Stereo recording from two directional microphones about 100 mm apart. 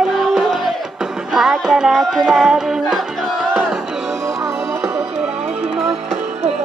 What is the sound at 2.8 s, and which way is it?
Battle cry, 5° left (ahead or behind).